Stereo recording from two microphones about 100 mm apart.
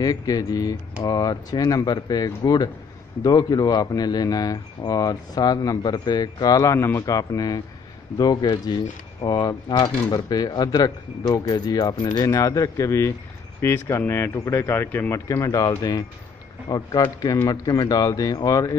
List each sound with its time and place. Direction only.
0.0 s speech: 40° left (ahead or behind); by 15.1 s 20° left (ahead or behind)
15.1 s speech: 35° left (ahead or behind)